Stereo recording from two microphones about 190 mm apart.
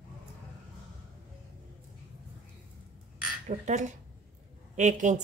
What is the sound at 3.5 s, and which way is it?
A woman's voice, 40° right (ahead or behind).